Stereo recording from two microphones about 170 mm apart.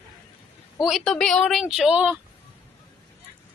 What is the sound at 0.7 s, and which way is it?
Speech, centre (ahead or behind).